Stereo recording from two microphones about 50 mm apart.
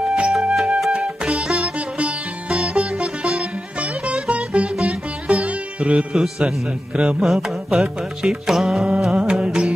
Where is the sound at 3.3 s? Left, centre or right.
Centre.